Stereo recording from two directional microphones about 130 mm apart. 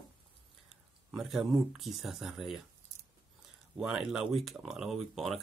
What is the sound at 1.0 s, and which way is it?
Speech, 5° right (ahead or behind).